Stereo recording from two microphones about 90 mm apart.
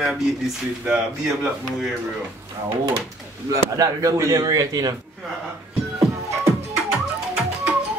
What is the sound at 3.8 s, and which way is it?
A man's voice, 35° right (ahead or behind).